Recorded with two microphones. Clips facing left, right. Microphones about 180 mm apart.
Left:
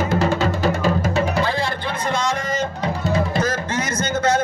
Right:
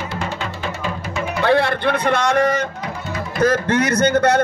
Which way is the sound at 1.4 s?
65° right (ahead or behind).